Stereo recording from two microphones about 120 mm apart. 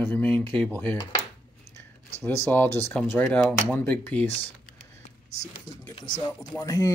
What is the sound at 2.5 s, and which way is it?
Speech, 20° left (ahead or behind).